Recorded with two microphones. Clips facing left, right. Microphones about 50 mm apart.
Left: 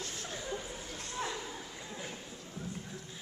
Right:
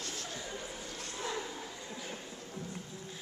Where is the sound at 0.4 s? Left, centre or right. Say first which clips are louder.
Left 2 dB; centre.